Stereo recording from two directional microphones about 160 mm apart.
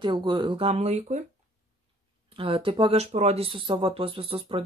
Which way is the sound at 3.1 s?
45° right (ahead or behind).